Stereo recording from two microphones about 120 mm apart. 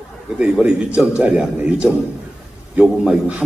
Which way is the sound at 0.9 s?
10° right (ahead or behind).